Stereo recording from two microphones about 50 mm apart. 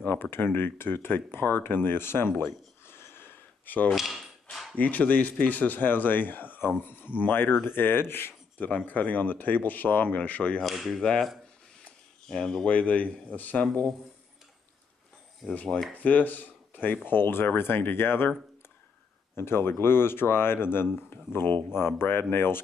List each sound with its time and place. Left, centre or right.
0.0 s speech: left
3.9 s speech: centre
4.7 s speech: left
8.5 s speech: left
10.6 s speech: centre
11.0 s speech: centre
12.3 s speech: centre
12.7 s a man's voice: left
15.5 s a man's voice: left
19.3 s speech: left